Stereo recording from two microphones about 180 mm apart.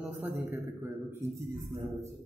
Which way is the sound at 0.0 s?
10° right (ahead or behind).